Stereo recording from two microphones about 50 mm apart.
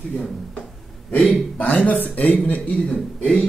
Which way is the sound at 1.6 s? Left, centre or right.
Left.